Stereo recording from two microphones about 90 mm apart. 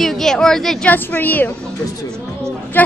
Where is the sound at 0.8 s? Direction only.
20° left (ahead or behind).